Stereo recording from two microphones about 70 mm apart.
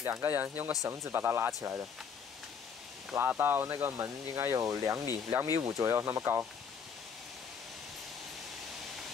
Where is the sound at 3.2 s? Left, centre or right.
Right.